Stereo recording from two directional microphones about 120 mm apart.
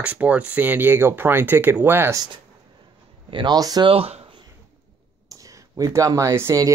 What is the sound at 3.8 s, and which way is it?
Speech, 55° right (ahead or behind).